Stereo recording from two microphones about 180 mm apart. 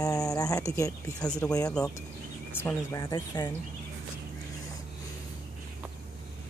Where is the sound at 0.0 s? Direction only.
20° left (ahead or behind).